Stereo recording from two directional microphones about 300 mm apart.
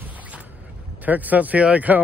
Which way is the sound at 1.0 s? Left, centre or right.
Centre.